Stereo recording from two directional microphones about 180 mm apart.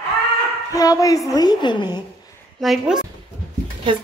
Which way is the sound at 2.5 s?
Centre (ahead or behind).